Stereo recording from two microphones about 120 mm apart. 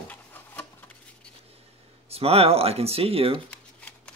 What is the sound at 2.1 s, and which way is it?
Speech, 55° right (ahead or behind).